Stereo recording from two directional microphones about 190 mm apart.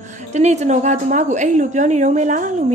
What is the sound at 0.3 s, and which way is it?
Speech, 35° right (ahead or behind).